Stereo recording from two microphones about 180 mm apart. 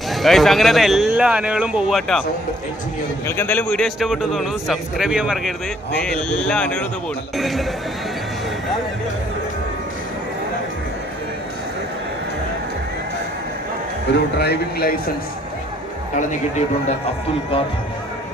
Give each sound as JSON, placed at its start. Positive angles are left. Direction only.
{"t": 0.1, "sound": "a man's voice", "side_deg": 0}
{"t": 3.3, "sound": "a man's voice", "side_deg": 10}
{"t": 14.1, "sound": "speech", "side_deg": 65}
{"t": 16.2, "sound": "a man's voice", "side_deg": 45}